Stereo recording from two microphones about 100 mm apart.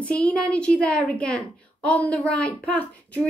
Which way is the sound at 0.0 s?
10° left (ahead or behind).